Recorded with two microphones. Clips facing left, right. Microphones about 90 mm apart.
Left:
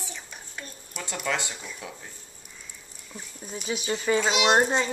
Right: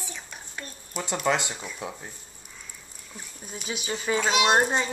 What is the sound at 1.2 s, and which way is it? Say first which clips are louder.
Speech: right 4 dB; 20° right (ahead or behind).